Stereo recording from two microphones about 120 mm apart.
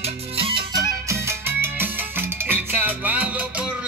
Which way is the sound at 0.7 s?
25° right (ahead or behind).